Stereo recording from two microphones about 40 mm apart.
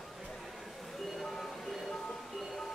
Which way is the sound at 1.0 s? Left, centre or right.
Centre.